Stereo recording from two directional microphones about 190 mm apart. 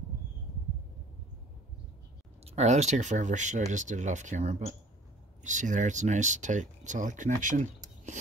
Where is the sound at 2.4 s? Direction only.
35° right (ahead or behind).